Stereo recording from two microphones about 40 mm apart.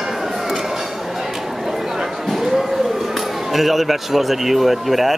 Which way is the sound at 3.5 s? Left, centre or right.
Centre.